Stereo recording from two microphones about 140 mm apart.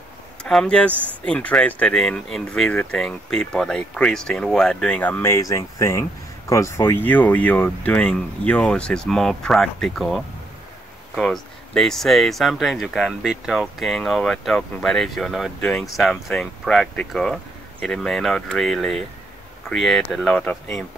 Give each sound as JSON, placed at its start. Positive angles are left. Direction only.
{"t": 0.4, "sound": "speech", "side_deg": 5}